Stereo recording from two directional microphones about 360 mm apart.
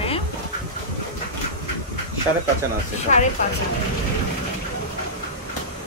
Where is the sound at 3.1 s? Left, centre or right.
Centre.